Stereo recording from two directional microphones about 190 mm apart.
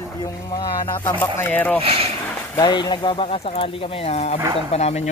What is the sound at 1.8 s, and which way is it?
Speech, 30° right (ahead or behind).